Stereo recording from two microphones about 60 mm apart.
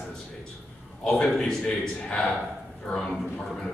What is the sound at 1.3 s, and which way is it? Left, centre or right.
Speech, centre.